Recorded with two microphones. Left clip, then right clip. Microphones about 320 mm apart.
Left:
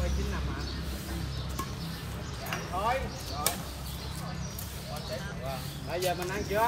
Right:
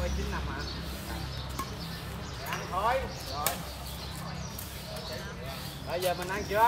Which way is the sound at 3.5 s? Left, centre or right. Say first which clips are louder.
Left 1 dB; centre.